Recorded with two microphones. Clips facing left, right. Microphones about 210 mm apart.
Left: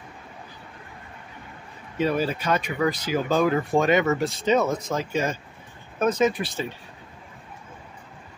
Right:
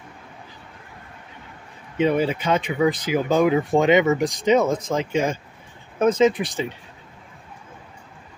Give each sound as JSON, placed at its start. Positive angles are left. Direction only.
{"t": 2.0, "sound": "speech", "side_deg": -20}